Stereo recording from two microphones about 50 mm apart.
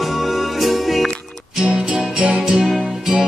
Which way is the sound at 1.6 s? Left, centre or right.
Centre.